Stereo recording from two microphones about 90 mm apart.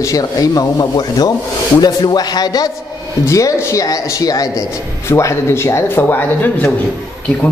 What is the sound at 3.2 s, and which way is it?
A man's voice, 35° left (ahead or behind).